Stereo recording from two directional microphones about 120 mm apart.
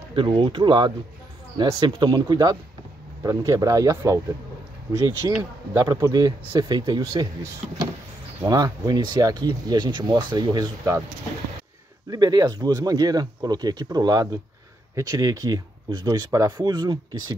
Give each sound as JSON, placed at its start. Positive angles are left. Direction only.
{"t": 0.1, "sound": "speech", "side_deg": -45}
{"t": 5.2, "sound": "speech", "side_deg": -30}
{"t": 8.5, "sound": "speech", "side_deg": -30}
{"t": 12.1, "sound": "speech", "side_deg": -35}